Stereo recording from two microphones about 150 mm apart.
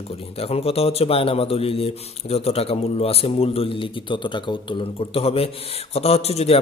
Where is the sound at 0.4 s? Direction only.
40° left (ahead or behind).